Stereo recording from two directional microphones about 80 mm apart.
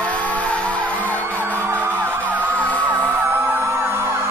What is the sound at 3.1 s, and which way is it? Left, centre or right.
Emergency vehicle, right.